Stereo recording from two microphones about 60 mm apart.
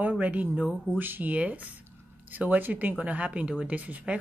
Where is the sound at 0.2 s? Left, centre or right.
Right.